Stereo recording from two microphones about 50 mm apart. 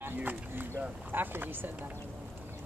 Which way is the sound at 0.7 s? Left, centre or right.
Right.